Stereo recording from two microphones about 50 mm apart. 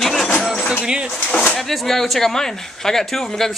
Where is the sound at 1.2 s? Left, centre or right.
Left.